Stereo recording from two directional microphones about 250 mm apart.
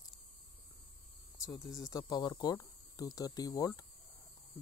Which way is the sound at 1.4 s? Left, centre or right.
Centre.